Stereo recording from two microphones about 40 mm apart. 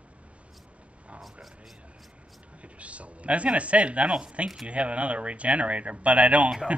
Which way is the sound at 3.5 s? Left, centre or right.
Right.